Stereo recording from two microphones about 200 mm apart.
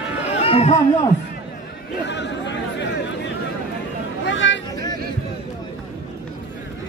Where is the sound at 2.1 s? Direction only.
60° left (ahead or behind).